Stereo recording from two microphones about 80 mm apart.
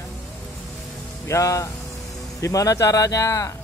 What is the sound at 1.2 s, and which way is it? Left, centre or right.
Speech, left.